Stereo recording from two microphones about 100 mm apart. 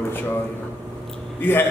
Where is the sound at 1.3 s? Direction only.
20° left (ahead or behind).